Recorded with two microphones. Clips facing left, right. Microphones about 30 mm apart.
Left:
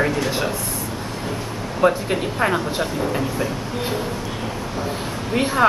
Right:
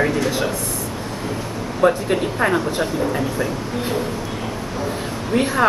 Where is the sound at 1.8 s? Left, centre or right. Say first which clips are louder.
Right 1 dB; centre.